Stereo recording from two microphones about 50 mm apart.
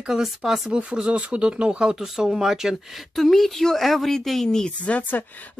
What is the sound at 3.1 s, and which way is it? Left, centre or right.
Speech, centre.